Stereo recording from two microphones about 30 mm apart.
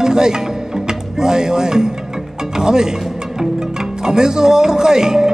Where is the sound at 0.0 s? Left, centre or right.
Right.